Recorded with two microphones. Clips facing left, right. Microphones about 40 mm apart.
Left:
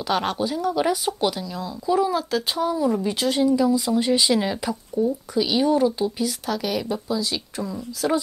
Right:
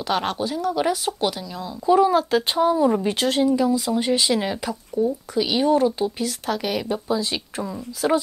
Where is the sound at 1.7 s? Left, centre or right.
Right.